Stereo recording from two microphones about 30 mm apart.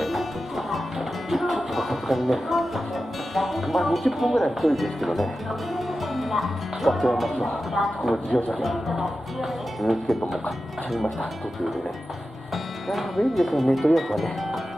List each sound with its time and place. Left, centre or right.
0.0 s music: centre
3.3 s speech: centre
8.3 s speech: left
8.5 s speech: centre
12.9 s speech: centre